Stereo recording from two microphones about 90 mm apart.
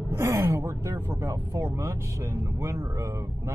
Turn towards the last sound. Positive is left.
turn(degrees=-30)  # may be behind; listen again after turning